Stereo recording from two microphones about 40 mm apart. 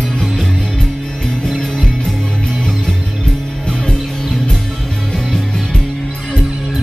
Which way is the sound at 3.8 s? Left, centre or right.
Left.